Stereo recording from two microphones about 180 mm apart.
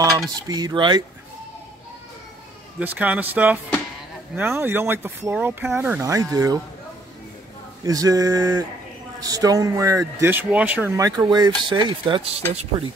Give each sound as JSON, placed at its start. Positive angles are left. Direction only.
{"t": 0.5, "sound": "speech", "side_deg": -20}
{"t": 2.8, "sound": "speech", "side_deg": -10}
{"t": 7.8, "sound": "speech", "side_deg": -20}